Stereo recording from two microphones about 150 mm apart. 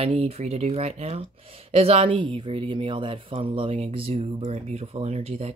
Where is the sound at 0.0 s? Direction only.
40° right (ahead or behind).